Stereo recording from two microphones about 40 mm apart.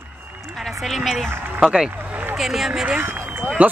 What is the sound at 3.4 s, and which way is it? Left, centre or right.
Speech, right.